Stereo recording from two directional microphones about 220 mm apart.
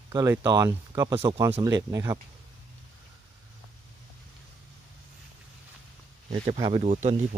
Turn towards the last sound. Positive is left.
turn(degrees=-30)  # may be behind; listen again after turning